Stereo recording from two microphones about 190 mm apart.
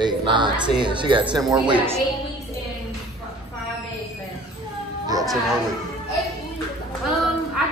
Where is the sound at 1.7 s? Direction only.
10° right (ahead or behind).